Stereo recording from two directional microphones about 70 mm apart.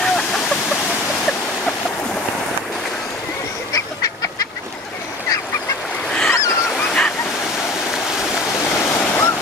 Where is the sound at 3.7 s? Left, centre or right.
Left.